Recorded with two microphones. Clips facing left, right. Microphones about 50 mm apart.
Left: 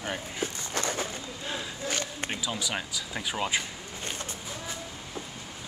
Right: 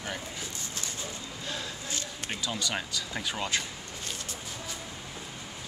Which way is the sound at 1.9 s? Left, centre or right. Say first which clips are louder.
Left 5 dB; left.